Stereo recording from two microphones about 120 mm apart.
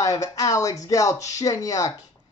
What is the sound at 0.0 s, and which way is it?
A man's voice, 30° left (ahead or behind).